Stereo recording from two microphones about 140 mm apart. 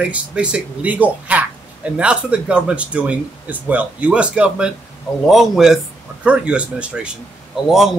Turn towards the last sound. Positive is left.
turn(degrees=0)  # may be behind; listen again after turning